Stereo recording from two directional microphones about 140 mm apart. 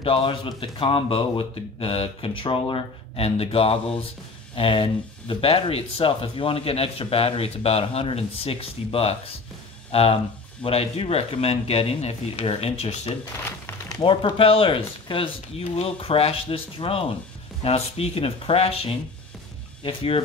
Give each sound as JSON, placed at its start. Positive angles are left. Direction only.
{"t": 0.0, "sound": "a man's voice", "side_deg": 40}
{"t": 13.9, "sound": "a man's voice", "side_deg": 35}